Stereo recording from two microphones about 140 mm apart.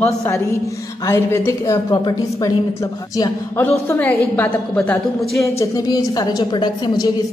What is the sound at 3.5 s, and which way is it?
A woman's voice, 15° left (ahead or behind).